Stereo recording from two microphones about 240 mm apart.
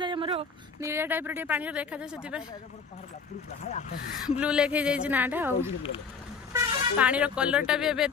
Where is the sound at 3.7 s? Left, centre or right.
Left.